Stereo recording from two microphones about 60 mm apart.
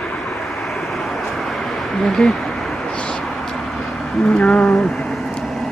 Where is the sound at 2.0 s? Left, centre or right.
Centre.